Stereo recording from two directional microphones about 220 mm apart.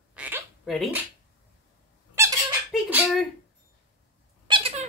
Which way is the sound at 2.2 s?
10° right (ahead or behind).